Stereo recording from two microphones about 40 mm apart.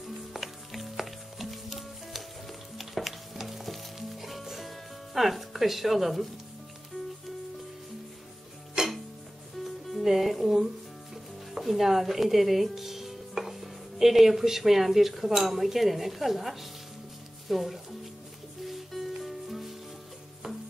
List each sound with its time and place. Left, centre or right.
0.3 s music: centre
2.8 s stir: centre
8.8 s music: centre
10.0 s music: centre
11.5 s speech: centre
18.7 s music: centre